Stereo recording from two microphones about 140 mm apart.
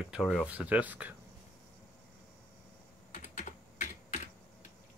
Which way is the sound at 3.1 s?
60° left (ahead or behind).